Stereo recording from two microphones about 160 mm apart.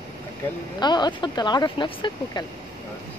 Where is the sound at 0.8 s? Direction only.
25° left (ahead or behind).